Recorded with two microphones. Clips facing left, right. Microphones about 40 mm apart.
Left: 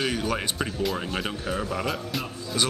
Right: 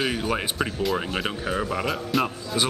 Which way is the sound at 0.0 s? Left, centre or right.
Centre.